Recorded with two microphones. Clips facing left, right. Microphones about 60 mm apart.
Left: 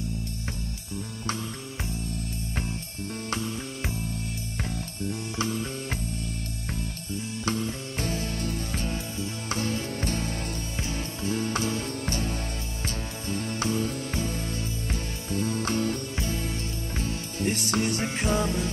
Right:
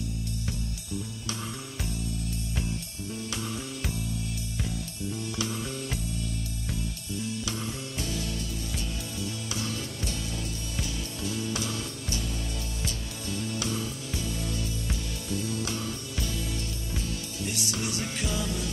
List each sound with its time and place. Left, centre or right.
6.7 s music: left
16.2 s music: left